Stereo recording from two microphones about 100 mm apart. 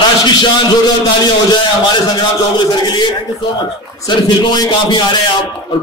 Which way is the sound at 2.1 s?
50° left (ahead or behind).